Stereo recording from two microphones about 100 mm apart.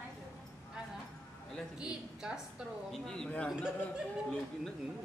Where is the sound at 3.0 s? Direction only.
5° left (ahead or behind).